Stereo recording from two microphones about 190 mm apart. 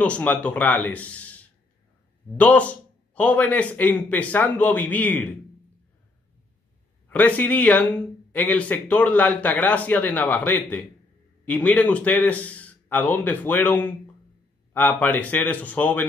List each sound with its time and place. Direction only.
0.0 s speech: 5° left (ahead or behind)
7.1 s speech: 10° left (ahead or behind)